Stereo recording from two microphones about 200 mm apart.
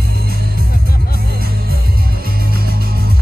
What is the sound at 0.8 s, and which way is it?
Music, 50° left (ahead or behind).